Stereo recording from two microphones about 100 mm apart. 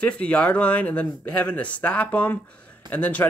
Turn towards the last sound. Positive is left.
turn(degrees=15)  # may be behind; listen again after turning